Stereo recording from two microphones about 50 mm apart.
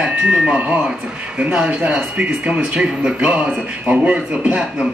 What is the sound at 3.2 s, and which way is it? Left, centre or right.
Speech, right.